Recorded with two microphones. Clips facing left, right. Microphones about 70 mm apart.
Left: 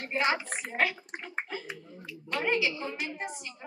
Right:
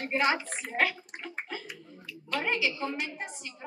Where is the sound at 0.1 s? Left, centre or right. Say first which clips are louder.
Right 1 dB; left.